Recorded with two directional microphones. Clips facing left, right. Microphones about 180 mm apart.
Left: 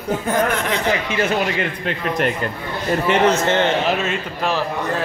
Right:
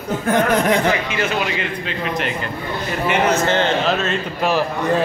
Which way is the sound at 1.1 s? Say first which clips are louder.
Left 2 dB; 50° left (ahead or behind).